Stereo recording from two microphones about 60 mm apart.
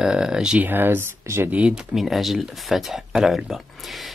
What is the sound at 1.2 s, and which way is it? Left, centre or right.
Speech, right.